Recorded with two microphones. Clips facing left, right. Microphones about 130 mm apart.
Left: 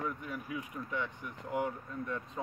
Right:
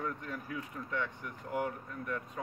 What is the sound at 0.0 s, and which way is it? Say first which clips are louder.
Speech: even; 10° left (ahead or behind).